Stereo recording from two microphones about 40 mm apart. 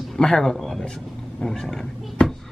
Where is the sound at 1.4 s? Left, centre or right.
Centre.